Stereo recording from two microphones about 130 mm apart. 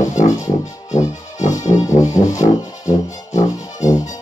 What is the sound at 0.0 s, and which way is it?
Music, 70° left (ahead or behind).